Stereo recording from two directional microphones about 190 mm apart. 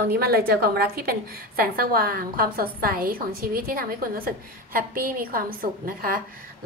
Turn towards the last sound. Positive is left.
turn(degrees=-50)  # may be behind; listen again after turning